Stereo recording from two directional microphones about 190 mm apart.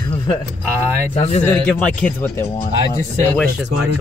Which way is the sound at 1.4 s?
10° left (ahead or behind).